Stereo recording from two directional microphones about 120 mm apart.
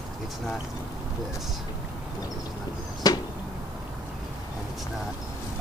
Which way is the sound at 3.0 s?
35° left (ahead or behind).